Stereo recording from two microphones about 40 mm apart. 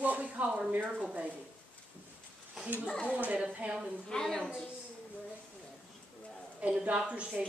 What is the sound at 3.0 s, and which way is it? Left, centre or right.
Speech, right.